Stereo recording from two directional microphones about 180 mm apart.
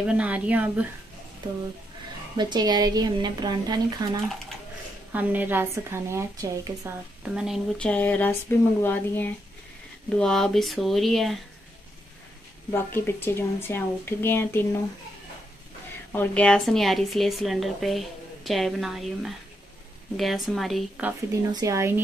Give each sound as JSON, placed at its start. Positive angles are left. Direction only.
{"t": 0.0, "sound": "a woman's voice", "side_deg": -5}
{"t": 2.3, "sound": "a woman's voice", "side_deg": -25}
{"t": 5.1, "sound": "a woman's voice", "side_deg": -10}
{"t": 7.2, "sound": "speech", "side_deg": -5}
{"t": 12.7, "sound": "speech", "side_deg": 10}
{"t": 16.1, "sound": "speech", "side_deg": 10}
{"t": 21.5, "sound": "a woman's voice", "side_deg": -20}